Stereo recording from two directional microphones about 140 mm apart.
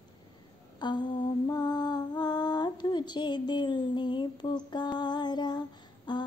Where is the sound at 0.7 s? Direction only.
35° left (ahead or behind).